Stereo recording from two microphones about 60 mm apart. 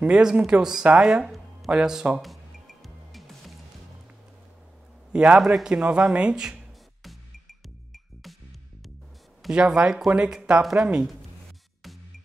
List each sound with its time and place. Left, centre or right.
0.0 s speech: centre
2.2 s music: centre
5.1 s a man's voice: centre
5.4 s speech: centre
7.0 s music: centre
9.5 s speech: centre